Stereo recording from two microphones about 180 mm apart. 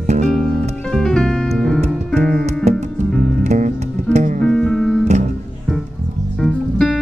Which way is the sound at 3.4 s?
40° right (ahead or behind).